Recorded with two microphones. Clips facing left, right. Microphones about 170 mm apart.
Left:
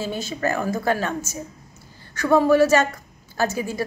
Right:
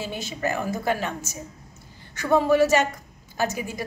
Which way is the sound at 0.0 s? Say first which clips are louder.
Left 3 dB; 15° right (ahead or behind).